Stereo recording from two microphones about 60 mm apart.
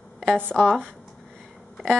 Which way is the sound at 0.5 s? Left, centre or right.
Centre.